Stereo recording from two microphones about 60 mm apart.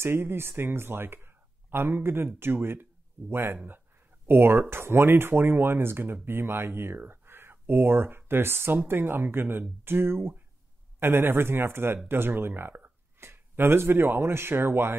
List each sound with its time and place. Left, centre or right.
0.0 s speech: right